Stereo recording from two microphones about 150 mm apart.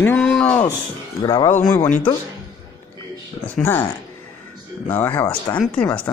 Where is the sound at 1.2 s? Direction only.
25° left (ahead or behind).